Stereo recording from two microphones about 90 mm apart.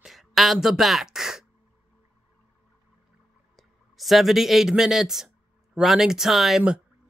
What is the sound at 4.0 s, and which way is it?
Speech, centre (ahead or behind).